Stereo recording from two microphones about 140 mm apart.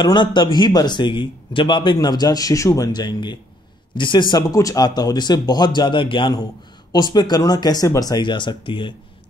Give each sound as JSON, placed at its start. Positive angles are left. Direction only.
{"t": 0.0, "sound": "a man's voice", "side_deg": 35}